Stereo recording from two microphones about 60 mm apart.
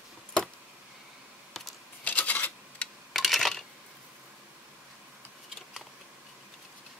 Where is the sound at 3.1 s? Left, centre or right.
Centre.